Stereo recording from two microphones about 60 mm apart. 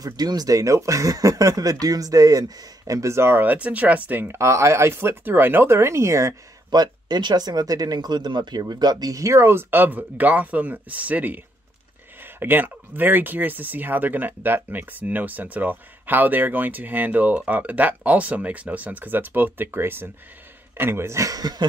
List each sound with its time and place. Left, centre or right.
0.0 s speech: right
3.1 s speech: right
3.4 s speech: right
4.3 s speech: right
7.3 s speech: right
21.2 s speech: right